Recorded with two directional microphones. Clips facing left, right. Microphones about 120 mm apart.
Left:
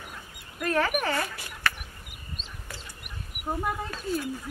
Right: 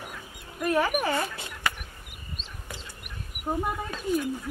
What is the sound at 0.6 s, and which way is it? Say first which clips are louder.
Speech: right 1 dB; 10° right (ahead or behind).